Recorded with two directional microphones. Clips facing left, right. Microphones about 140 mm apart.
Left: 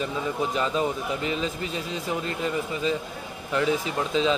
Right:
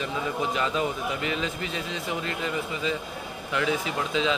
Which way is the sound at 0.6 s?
35° left (ahead or behind).